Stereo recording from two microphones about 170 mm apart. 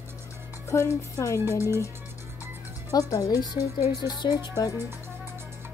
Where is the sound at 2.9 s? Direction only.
20° left (ahead or behind).